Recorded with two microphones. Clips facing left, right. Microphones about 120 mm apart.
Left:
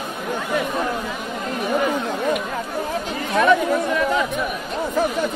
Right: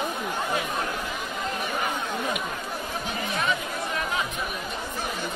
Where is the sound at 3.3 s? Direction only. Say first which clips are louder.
Left 14 dB; 85° left.